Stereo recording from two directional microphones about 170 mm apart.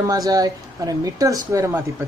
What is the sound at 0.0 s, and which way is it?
Speech, 20° right (ahead or behind).